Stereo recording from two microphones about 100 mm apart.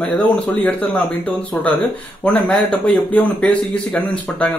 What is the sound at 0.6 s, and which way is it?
Speech, 15° left (ahead or behind).